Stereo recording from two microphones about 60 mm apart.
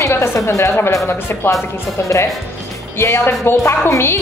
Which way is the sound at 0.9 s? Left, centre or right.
Left.